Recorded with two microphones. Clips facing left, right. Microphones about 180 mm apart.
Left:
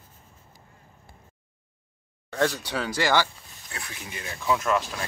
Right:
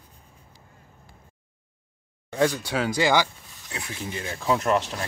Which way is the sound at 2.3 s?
10° right (ahead or behind).